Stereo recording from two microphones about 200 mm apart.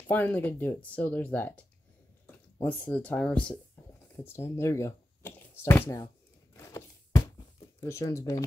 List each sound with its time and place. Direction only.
0.1 s speech: 10° left (ahead or behind)
6.5 s a sound: 15° left (ahead or behind)
7.8 s speech: 15° left (ahead or behind)